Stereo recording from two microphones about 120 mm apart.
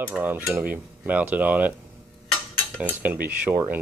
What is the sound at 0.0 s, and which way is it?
Speech, 15° right (ahead or behind).